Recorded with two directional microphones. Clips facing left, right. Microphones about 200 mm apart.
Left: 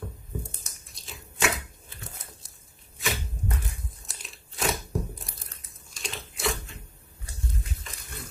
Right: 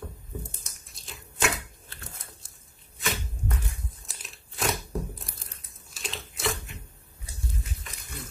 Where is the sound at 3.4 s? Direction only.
20° left (ahead or behind).